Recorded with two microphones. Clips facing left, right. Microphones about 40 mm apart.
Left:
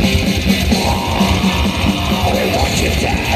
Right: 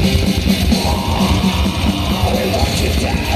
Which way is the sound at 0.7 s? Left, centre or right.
Centre.